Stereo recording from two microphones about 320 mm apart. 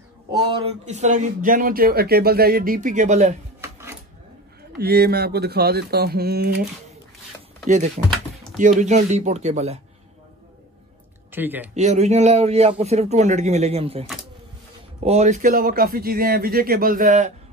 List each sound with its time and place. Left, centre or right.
0.3 s a man's voice: centre
4.7 s a man's voice: right
11.3 s speech: centre
11.7 s a man's voice: right
15.0 s a man's voice: right